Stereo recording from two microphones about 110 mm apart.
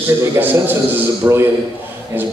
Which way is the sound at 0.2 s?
15° right (ahead or behind).